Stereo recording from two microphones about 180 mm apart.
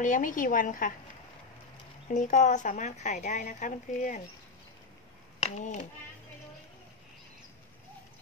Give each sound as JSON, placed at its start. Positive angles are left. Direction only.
{"t": 0.0, "sound": "speech", "side_deg": 45}
{"t": 2.1, "sound": "speech", "side_deg": 40}
{"t": 5.4, "sound": "speech", "side_deg": 40}